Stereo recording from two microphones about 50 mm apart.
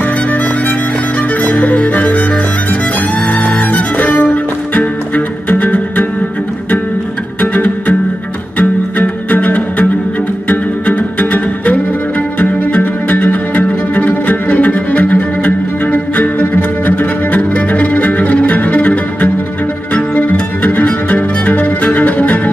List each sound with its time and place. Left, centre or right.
0.0 s music: left
3.3 s music: left
7.5 s music: left